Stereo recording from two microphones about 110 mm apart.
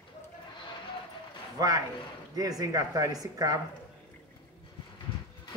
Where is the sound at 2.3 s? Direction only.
35° right (ahead or behind).